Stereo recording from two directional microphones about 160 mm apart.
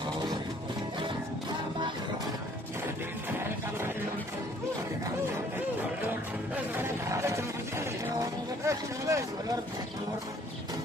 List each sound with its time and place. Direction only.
6.0 s music: 15° right (ahead or behind)